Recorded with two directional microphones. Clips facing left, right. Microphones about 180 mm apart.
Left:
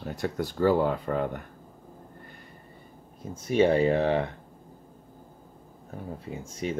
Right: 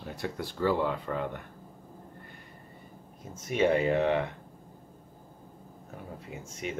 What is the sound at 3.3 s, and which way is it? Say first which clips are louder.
Speech: left 4 dB; 30° left (ahead or behind).